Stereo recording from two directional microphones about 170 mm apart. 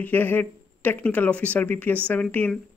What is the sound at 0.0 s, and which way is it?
Speech, 10° left (ahead or behind).